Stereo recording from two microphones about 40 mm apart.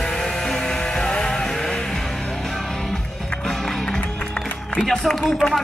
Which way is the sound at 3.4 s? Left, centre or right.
Centre.